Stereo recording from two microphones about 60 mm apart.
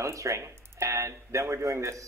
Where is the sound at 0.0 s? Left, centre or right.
Right.